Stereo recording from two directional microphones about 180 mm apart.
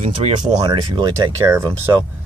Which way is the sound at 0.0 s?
40° right (ahead or behind).